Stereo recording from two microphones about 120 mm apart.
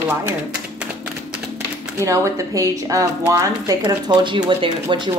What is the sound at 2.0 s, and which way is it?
Speech, 25° right (ahead or behind).